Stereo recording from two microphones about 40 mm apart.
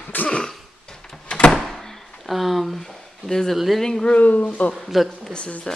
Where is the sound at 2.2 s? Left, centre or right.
Centre.